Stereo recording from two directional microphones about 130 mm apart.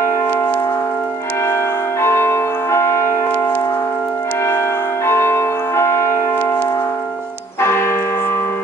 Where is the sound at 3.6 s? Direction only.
20° left (ahead or behind).